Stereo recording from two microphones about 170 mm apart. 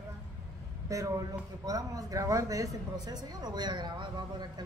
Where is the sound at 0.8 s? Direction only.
20° right (ahead or behind).